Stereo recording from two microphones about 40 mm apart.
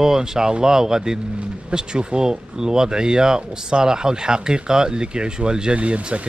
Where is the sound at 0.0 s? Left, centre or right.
Centre.